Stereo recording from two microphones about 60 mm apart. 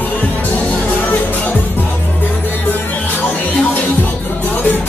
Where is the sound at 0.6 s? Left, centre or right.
Left.